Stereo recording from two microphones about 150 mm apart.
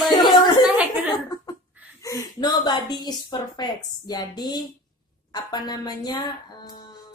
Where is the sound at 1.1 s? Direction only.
25° left (ahead or behind).